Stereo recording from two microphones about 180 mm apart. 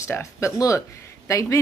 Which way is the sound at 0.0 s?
15° left (ahead or behind).